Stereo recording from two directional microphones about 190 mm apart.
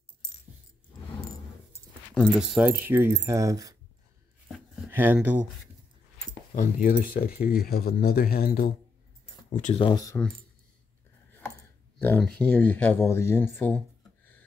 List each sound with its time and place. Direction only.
2.1 s speech: centre (ahead or behind)
2.8 s speech: 15° right (ahead or behind)
4.9 s speech: 10° right (ahead or behind)
6.5 s speech: 45° left (ahead or behind)
9.8 s speech: 20° left (ahead or behind)
12.0 s speech: 5° left (ahead or behind)